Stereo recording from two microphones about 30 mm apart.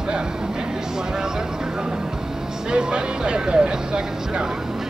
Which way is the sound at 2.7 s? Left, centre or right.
Right.